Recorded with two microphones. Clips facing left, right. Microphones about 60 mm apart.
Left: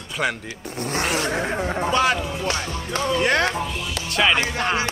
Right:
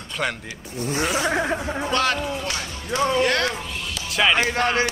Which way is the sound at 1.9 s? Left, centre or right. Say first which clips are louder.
Left 1 dB; centre.